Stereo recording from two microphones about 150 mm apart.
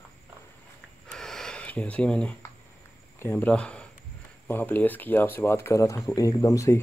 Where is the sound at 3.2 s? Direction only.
15° left (ahead or behind).